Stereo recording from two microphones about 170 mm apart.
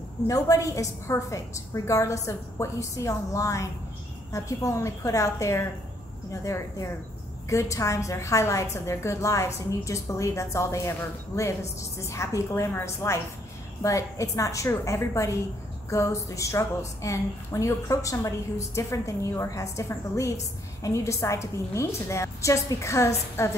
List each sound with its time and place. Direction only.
0.3 s a woman's voice: 20° left (ahead or behind)